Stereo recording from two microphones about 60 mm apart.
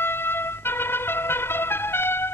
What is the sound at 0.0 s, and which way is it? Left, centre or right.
Music, left.